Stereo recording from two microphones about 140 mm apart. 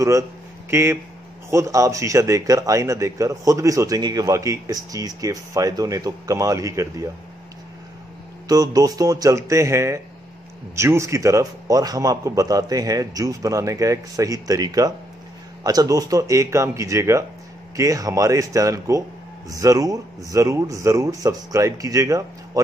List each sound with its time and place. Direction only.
0.7 s speech: 20° right (ahead or behind)
8.5 s speech: 25° right (ahead or behind)